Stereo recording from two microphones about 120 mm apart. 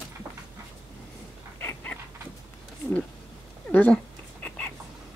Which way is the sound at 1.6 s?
15° left (ahead or behind).